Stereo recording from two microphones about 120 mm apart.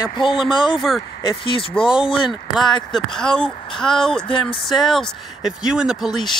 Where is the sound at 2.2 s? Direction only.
Centre (ahead or behind).